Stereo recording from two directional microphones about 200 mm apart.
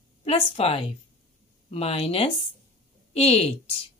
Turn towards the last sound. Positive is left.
turn(degrees=30)  # may be behind; listen again after turning